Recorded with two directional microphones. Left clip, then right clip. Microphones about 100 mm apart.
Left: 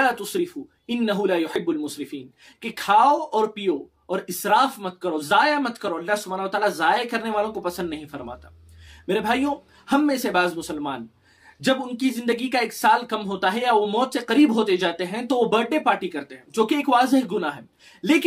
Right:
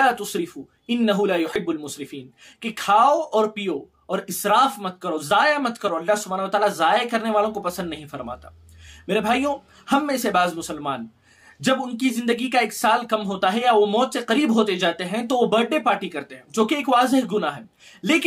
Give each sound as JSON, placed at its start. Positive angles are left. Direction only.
{"t": 0.0, "sound": "speech", "side_deg": -35}